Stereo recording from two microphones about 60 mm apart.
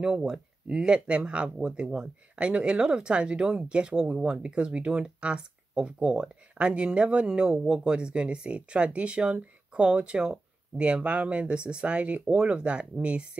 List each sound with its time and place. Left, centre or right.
0.0 s speech: centre